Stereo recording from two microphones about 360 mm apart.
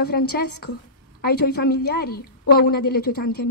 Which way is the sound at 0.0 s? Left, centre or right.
Left.